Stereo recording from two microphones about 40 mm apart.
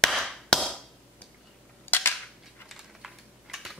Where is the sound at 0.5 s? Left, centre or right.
Centre.